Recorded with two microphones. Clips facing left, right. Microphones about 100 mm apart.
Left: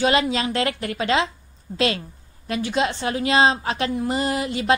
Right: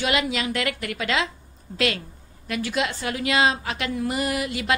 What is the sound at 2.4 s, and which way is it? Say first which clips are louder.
A woman's voice: left 3 dB; 30° left (ahead or behind).